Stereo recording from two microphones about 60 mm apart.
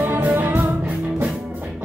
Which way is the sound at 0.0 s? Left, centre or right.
Right.